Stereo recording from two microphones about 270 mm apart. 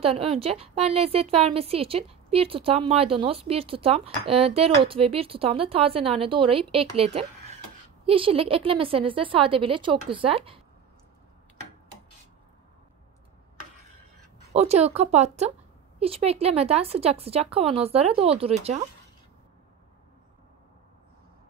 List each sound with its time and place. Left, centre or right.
0.0 s a woman's voice: right
14.5 s a woman's voice: right